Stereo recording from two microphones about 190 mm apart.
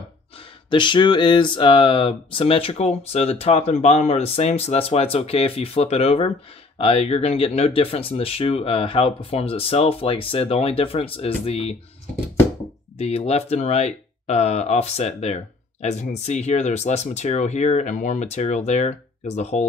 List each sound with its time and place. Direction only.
0.7 s speech: 25° left (ahead or behind)
12.9 s speech: 35° left (ahead or behind)